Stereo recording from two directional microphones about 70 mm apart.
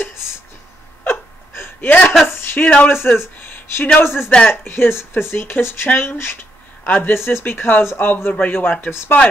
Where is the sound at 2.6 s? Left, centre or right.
Centre.